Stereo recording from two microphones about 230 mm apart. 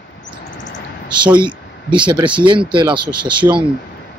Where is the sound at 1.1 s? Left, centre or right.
Centre.